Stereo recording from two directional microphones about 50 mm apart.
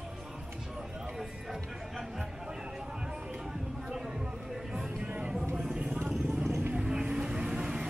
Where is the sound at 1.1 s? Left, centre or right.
Centre.